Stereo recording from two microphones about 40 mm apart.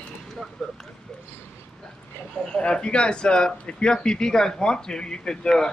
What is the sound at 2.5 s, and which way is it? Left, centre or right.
A man's voice, left.